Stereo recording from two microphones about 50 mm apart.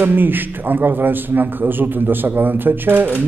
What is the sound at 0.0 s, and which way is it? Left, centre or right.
A man's voice, right.